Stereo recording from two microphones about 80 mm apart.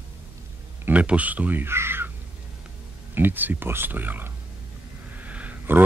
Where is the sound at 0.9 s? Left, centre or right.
Centre.